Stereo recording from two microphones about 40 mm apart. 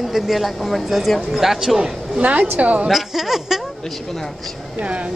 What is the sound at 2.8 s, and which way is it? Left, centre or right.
Speech, centre.